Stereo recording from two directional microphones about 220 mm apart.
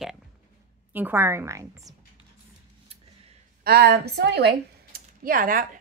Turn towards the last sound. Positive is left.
turn(degrees=-40)  # may be behind; listen again after turning